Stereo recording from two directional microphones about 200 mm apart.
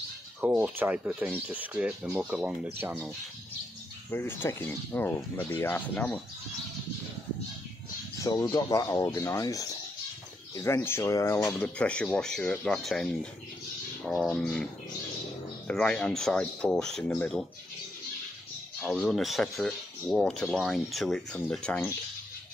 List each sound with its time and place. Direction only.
0.4 s speech: 10° right (ahead or behind)
4.1 s speech: 10° left (ahead or behind)
8.2 s speech: 15° left (ahead or behind)
18.8 s speech: 5° left (ahead or behind)